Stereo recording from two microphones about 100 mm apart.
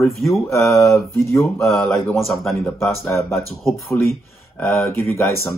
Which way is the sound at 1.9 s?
Centre (ahead or behind).